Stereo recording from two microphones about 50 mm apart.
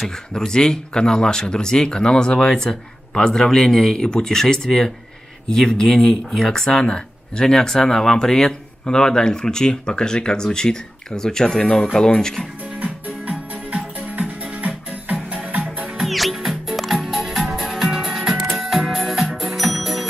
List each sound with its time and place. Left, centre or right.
0.0 s speech: centre
13.3 s music: centre
14.0 s music: right
16.0 s music: centre